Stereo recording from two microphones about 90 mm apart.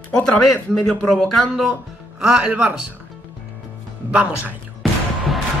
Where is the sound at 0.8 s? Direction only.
Centre (ahead or behind).